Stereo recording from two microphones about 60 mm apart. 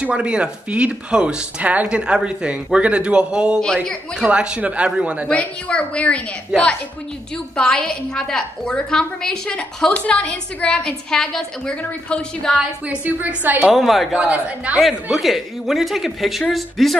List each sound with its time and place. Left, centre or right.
0.0 s speech: centre
5.3 s a woman's voice: centre
12.8 s speech: right
13.7 s a woman's voice: centre
14.2 s speech: right
14.8 s a woman's voice: centre